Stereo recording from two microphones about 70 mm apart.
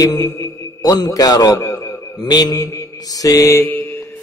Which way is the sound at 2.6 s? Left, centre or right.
Left.